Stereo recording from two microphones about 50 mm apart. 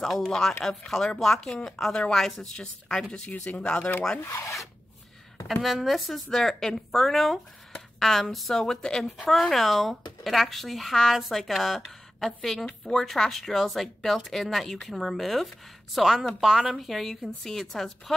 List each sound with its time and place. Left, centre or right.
0.0 s speech: centre
3.3 s speech: left
4.3 s filing: left
5.5 s speech: centre